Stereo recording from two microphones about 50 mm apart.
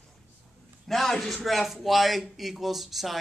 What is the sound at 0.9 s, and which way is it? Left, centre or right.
Speech, centre.